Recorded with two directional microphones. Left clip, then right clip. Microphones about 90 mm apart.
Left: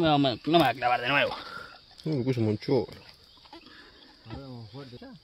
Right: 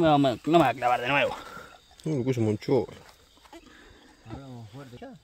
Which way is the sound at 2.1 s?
10° right (ahead or behind).